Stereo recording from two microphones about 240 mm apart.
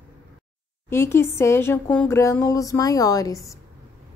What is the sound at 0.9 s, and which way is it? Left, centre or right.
Speech, centre.